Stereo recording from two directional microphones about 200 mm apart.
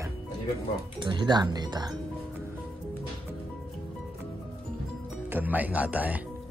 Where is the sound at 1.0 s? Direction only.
25° right (ahead or behind).